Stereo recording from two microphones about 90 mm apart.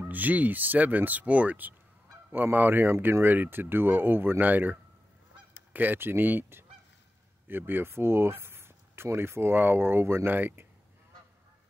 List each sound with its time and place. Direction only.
0.1 s speech: 20° right (ahead or behind)